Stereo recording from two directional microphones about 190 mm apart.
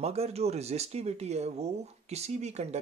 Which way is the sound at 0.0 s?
30° right (ahead or behind).